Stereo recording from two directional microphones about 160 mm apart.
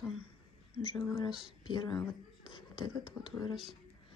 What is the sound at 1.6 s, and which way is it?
Speech, 30° left (ahead or behind).